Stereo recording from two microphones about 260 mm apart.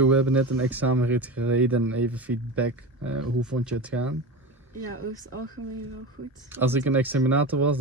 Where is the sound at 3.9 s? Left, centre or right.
Right.